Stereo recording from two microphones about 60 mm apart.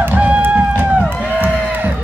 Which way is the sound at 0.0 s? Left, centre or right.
Right.